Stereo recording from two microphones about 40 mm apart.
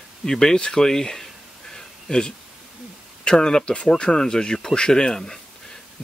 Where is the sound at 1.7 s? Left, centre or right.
Centre.